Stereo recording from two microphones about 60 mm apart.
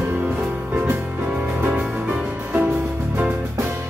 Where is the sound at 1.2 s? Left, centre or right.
Right.